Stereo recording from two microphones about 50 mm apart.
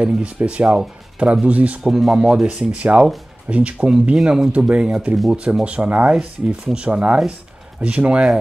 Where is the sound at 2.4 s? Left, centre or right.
Right.